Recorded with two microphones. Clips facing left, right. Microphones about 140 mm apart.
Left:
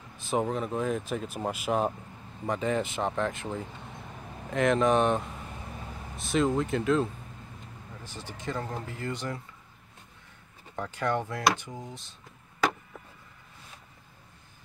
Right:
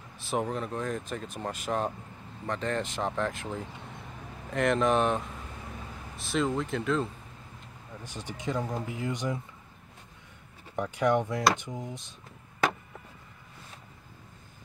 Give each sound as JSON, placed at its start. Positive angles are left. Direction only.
{"t": 0.2, "sound": "speech", "side_deg": 0}
{"t": 8.0, "sound": "speech", "side_deg": -15}
{"t": 10.8, "sound": "speech", "side_deg": -15}